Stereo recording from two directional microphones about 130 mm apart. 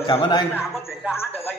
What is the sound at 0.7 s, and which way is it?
Speech, 5° right (ahead or behind).